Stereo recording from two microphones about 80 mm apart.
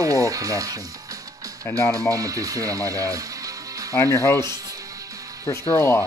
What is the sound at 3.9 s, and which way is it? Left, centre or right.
Speech, left.